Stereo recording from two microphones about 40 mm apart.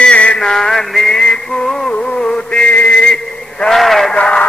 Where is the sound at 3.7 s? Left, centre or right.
Centre.